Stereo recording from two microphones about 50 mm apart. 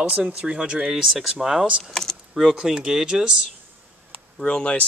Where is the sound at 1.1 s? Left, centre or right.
Centre.